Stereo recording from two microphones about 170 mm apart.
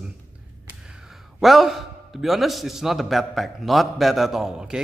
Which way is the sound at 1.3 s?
Centre (ahead or behind).